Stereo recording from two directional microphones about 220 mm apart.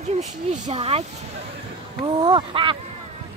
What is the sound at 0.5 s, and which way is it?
Speech, 30° right (ahead or behind).